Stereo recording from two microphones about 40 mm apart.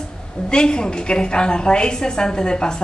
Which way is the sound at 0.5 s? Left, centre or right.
Left.